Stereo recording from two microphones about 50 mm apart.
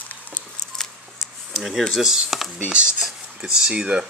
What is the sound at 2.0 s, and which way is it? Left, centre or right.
Speech, centre.